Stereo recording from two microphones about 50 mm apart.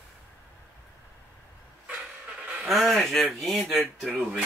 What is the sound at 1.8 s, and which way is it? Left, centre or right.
Vehicle, right.